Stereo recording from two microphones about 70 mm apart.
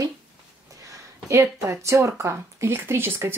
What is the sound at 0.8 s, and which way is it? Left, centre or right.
Speech, right.